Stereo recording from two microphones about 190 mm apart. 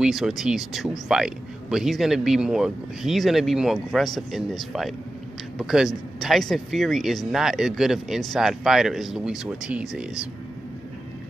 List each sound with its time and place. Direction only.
0.0 s speech: centre (ahead or behind)